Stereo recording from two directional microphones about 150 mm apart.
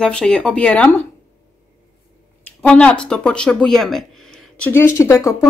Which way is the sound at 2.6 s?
10° left (ahead or behind).